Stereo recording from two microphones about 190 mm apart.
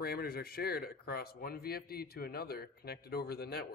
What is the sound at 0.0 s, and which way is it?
A man's voice, 55° left (ahead or behind).